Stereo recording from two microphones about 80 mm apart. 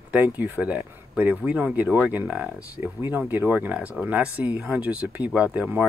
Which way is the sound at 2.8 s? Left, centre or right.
Right.